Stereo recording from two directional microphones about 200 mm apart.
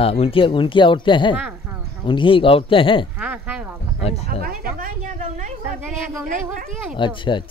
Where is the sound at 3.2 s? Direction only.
5° right (ahead or behind).